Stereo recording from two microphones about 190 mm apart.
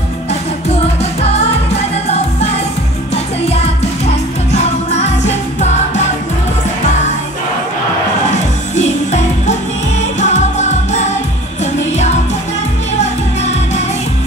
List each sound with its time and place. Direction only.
4.1 s music: 35° left (ahead or behind)
8.3 s music: 35° left (ahead or behind)
13.4 s music: 35° left (ahead or behind)